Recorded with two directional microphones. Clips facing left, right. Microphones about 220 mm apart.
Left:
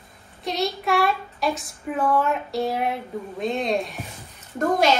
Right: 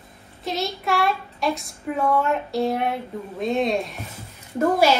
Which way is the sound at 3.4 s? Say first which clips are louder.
Right 2 dB; centre (ahead or behind).